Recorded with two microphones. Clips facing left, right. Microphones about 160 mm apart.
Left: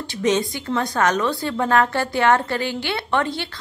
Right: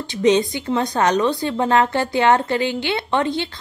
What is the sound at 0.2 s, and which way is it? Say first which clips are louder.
A woman's voice: right 4 dB; 20° right (ahead or behind).